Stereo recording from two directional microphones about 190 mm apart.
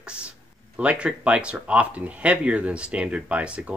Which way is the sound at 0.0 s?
5° right (ahead or behind).